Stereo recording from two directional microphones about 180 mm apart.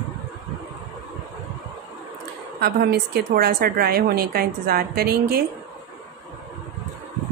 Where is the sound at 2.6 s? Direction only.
60° right (ahead or behind).